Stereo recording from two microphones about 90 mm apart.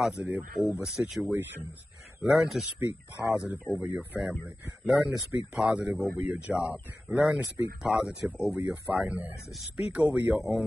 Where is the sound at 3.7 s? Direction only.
15° right (ahead or behind).